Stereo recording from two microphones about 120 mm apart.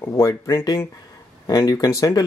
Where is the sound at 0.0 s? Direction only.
25° left (ahead or behind).